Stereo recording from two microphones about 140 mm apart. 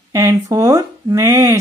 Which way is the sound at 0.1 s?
20° right (ahead or behind).